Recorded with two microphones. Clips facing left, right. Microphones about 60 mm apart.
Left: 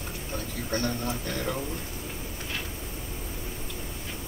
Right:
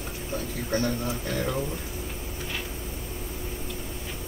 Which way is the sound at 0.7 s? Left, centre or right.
Centre.